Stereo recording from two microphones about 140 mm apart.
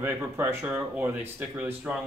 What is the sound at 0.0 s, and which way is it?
Speech, 15° right (ahead or behind).